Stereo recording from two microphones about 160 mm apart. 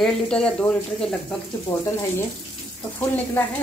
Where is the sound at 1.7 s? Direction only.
25° left (ahead or behind).